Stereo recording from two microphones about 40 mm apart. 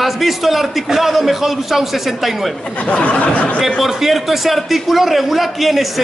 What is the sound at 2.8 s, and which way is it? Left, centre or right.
Speech, left.